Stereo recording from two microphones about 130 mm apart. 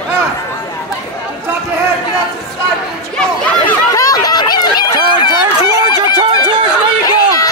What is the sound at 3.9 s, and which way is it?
Chatter, 30° left (ahead or behind).